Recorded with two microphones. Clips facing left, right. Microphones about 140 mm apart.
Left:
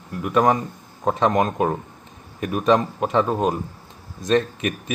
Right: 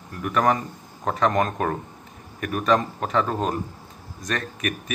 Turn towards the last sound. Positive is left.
turn(degrees=25)  # may be behind; listen again after turning